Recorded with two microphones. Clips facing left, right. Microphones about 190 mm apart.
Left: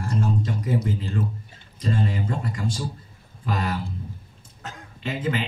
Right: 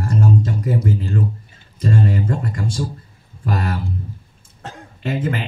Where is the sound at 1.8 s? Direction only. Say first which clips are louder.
Right 6 dB; 50° right (ahead or behind).